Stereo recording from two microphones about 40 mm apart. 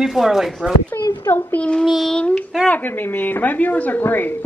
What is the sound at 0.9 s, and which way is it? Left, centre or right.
Speech, left.